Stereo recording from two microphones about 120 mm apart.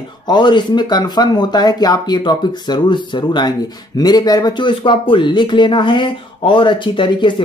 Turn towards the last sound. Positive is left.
turn(degrees=40)  # may be behind; listen again after turning